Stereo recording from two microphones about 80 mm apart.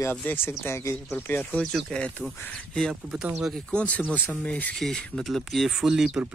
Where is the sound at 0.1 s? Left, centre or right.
Centre.